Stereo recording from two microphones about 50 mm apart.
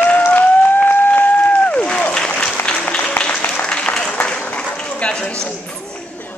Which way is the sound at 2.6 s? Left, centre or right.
Left.